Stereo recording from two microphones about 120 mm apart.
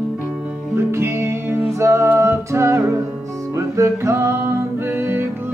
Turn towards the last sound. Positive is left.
turn(degrees=-20)  # may be behind; listen again after turning